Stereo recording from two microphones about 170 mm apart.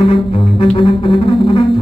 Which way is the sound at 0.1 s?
35° left (ahead or behind).